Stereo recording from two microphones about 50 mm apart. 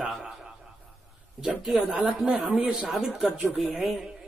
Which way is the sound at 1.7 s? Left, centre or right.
Centre.